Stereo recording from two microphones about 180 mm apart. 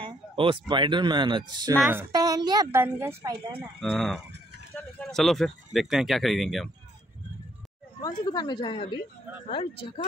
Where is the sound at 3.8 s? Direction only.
Centre (ahead or behind).